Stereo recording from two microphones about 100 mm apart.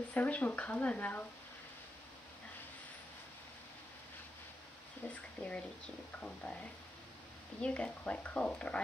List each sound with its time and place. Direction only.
0.1 s speech: 15° left (ahead or behind)
5.0 s speech: 15° left (ahead or behind)
7.6 s speech: 10° left (ahead or behind)